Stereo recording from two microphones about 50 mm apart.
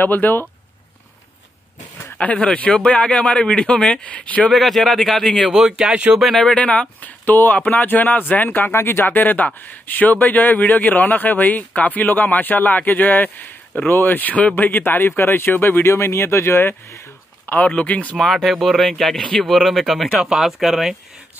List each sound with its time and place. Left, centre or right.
0.0 s speech: left
2.1 s speech: left
4.5 s speech: centre
5.5 s speech: centre
6.4 s speech: left
8.7 s speech: left
15.8 s speech: left
17.5 s speech: left
18.1 s speech: centre